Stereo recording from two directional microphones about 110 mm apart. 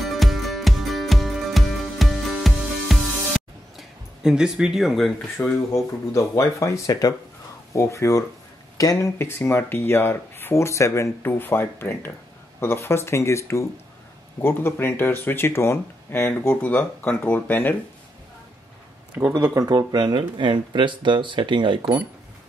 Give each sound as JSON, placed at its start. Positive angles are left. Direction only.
{"t": 0.0, "sound": "music", "side_deg": 0}
{"t": 5.7, "sound": "speech", "side_deg": 25}
{"t": 19.3, "sound": "speech", "side_deg": -30}